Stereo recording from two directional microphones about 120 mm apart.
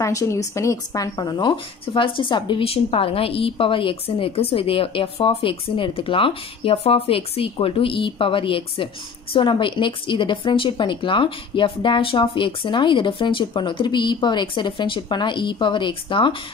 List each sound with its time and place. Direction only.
0.0 s speech: 25° left (ahead or behind); by 16.3 s 45° left (ahead or behind)